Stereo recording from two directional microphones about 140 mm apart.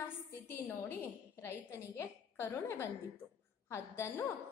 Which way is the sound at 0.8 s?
20° left (ahead or behind).